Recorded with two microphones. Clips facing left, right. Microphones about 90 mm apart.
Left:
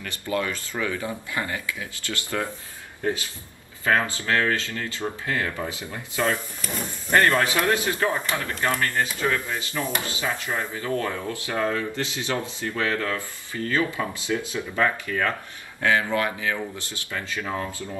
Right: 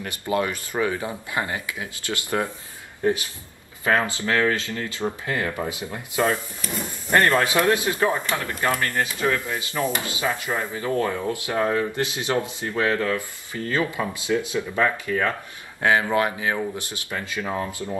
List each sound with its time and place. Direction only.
0.0 s a man's voice: 20° right (ahead or behind)